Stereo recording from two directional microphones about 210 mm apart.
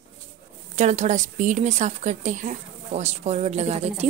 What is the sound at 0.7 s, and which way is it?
Speech, 30° right (ahead or behind).